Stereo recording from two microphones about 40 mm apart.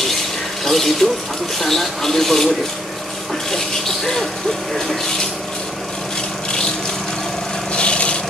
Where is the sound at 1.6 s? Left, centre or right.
Centre.